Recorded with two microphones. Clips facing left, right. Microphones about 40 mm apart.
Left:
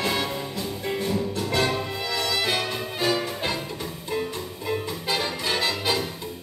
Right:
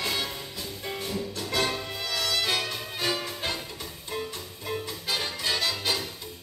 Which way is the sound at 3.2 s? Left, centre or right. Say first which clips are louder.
Left 4 dB; left.